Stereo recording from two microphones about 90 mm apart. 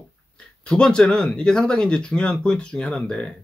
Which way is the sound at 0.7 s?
10° left (ahead or behind).